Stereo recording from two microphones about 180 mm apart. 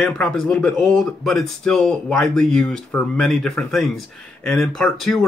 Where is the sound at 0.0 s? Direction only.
5° left (ahead or behind).